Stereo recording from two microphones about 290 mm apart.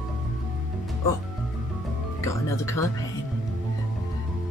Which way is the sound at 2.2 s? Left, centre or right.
Centre.